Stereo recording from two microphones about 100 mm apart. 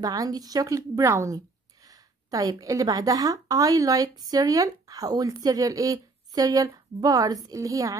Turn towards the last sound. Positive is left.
turn(degrees=-35)  # may be behind; listen again after turning